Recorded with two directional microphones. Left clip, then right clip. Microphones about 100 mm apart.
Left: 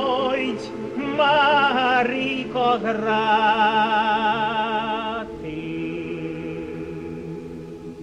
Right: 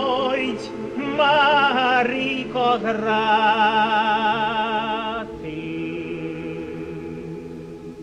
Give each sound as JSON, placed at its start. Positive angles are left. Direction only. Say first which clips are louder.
{"t": 0.0, "sound": "music", "louder": "even", "side_deg": -30}